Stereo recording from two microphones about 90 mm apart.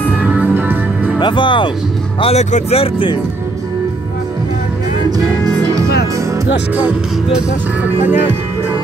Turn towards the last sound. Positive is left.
turn(degrees=-15)  # may be behind; listen again after turning